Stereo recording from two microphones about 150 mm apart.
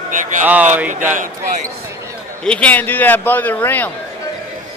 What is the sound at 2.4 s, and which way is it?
A man's voice, 5° left (ahead or behind).